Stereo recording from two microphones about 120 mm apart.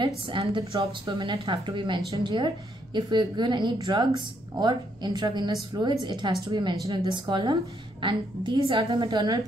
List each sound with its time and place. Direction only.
0.4 s speech: 55° right (ahead or behind)
1.0 s a woman's voice: 40° right (ahead or behind)